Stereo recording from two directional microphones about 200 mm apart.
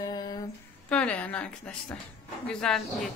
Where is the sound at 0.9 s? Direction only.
5° left (ahead or behind).